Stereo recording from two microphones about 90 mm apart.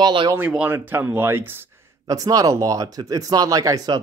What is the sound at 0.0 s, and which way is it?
Speech, 65° right (ahead or behind).